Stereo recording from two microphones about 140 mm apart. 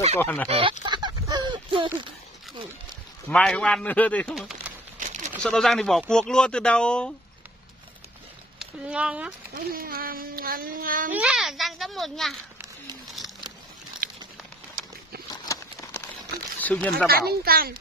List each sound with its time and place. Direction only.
0.2 s a man's voice: 15° left (ahead or behind)
0.5 s speech: 40° right (ahead or behind)
0.8 s a sound: 35° right (ahead or behind)
3.3 s a man's voice: 5° left (ahead or behind)
4.4 s a sound: centre (ahead or behind)
5.4 s speech: 5° left (ahead or behind)
8.5 s speech: 5° right (ahead or behind)
9.6 s speech: 90° right
11.1 s speech: 10° right (ahead or behind)
14.0 s crumpling: 90° right
15.2 s a sound: 25° left (ahead or behind)
16.5 s speech: 10° left (ahead or behind)
17.1 s speech: 90° right